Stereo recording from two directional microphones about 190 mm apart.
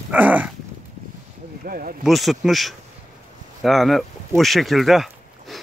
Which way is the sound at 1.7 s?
50° right (ahead or behind).